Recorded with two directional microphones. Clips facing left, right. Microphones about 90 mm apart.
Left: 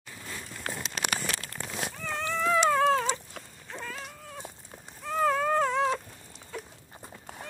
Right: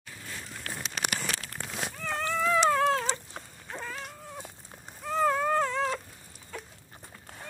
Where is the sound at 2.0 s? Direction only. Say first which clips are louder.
Even; centre (ahead or behind).